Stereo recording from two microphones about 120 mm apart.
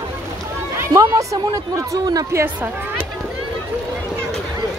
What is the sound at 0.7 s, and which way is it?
Speech, 25° right (ahead or behind).